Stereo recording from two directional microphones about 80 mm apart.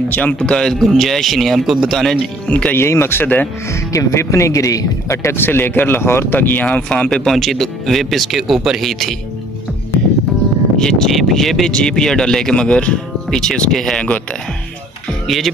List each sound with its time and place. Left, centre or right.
0.1 s speech: centre
2.4 s speech: centre
2.7 s a man's voice: left
3.9 s a man's voice: left; by 9.1 s centre
10.8 s speech: centre
15.2 s speech: centre